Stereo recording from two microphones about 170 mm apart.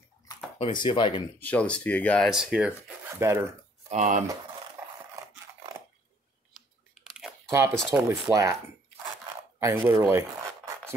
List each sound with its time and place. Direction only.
0.6 s speech: 30° left (ahead or behind)
1.4 s speech: 10° left (ahead or behind)
3.2 s speech: 15° right (ahead or behind)
3.9 s speech: 45° right (ahead or behind)
6.5 s typing: 5° right (ahead or behind)
7.5 s speech: 15° right (ahead or behind)
9.6 s speech: 20° right (ahead or behind)